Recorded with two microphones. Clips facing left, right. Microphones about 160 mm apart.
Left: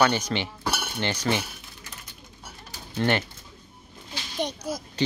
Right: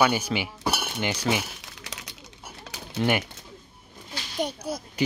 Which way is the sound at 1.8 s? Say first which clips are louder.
Right 5 dB; 85° right.